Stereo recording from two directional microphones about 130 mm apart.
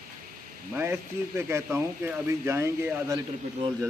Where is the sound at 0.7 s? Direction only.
20° right (ahead or behind).